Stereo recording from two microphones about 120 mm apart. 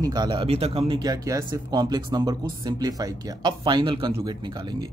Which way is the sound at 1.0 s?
30° right (ahead or behind).